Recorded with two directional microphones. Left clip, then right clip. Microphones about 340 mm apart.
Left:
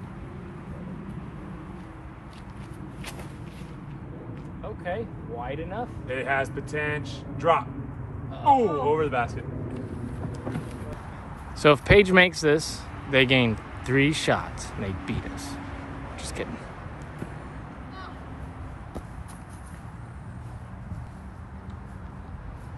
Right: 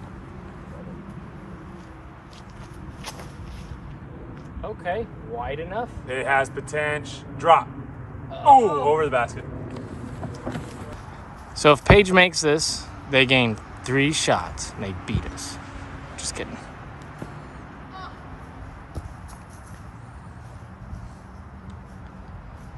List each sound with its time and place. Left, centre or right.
4.6 s speech: right
10.5 s a sound: right
11.5 s speech: centre
16.2 s vehicle: centre